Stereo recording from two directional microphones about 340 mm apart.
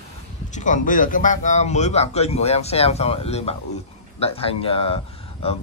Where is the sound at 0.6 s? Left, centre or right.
Left.